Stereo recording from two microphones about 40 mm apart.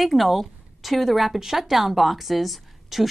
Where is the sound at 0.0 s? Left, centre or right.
Centre.